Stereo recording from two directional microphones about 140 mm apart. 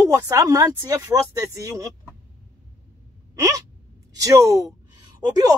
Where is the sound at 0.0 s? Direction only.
25° right (ahead or behind).